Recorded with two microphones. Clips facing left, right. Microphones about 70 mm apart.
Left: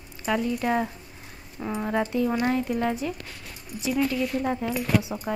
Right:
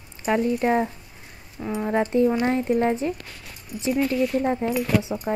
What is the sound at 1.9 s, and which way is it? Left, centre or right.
Speech, right.